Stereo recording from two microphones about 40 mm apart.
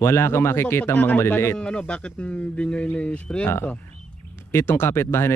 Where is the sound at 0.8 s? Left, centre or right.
Left.